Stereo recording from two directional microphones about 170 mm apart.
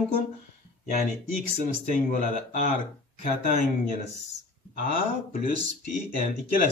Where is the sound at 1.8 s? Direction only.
45° left (ahead or behind).